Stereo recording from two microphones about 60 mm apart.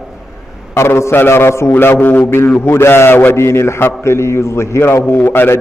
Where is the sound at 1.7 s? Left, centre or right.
Left.